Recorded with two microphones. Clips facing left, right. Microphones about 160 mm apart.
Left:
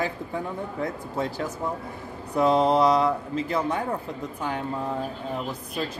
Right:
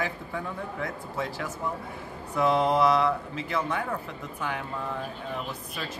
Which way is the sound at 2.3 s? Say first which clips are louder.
Left 3 dB; 35° left (ahead or behind).